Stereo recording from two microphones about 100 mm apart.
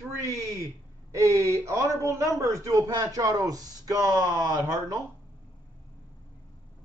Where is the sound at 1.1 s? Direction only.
30° right (ahead or behind).